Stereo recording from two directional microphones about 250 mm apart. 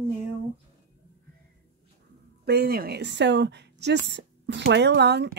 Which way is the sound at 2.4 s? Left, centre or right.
Right.